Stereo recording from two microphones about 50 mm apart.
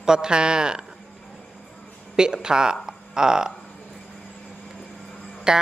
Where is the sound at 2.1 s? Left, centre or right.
Centre.